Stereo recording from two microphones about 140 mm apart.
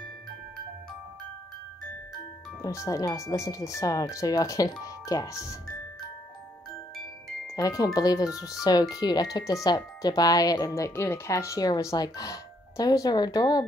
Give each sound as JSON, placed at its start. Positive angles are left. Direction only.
{"t": 2.6, "sound": "speech", "side_deg": 20}
{"t": 7.4, "sound": "speech", "side_deg": 25}